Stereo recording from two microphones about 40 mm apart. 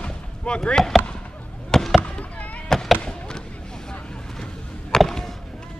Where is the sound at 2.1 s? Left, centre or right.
Left.